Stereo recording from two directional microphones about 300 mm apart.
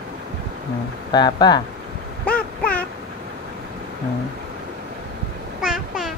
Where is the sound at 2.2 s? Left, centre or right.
Left.